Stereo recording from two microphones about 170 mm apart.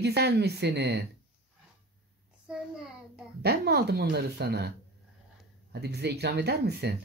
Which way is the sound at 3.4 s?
75° right (ahead or behind).